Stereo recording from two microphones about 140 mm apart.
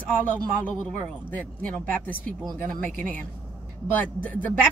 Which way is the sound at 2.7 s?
75° right (ahead or behind).